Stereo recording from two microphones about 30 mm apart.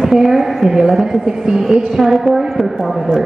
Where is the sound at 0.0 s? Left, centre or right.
Centre.